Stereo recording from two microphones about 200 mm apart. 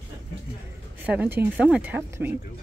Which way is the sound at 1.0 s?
10° right (ahead or behind).